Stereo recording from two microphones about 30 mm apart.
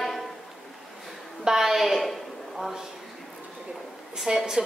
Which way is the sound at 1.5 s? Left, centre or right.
Centre.